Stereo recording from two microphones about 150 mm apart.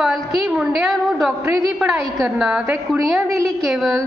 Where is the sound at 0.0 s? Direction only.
5° right (ahead or behind).